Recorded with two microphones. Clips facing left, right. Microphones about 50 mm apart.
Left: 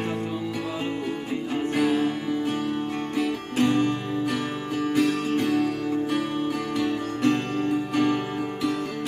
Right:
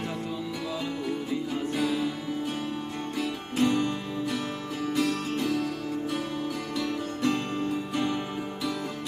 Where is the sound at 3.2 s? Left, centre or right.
Left.